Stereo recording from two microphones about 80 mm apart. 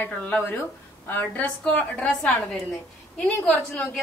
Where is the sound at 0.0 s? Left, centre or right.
Left.